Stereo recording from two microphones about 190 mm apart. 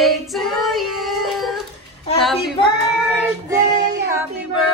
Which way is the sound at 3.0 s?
10° right (ahead or behind).